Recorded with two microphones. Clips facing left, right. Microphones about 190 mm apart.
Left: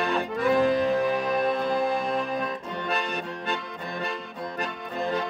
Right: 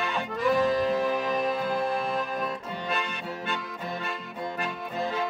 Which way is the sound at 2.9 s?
40° left (ahead or behind).